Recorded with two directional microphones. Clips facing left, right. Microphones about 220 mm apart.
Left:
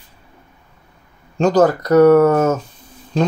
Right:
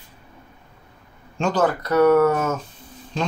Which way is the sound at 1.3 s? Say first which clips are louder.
Left 7 dB; 40° left (ahead or behind).